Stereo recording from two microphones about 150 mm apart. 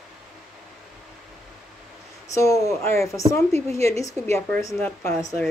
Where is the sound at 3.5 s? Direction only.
45° right (ahead or behind).